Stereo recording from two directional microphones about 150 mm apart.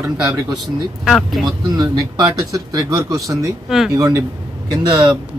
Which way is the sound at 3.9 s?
25° right (ahead or behind).